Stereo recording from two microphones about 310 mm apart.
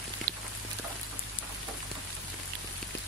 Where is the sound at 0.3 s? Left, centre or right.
Right.